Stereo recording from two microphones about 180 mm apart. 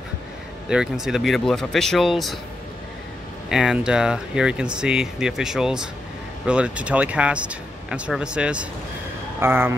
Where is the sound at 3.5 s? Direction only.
5° right (ahead or behind).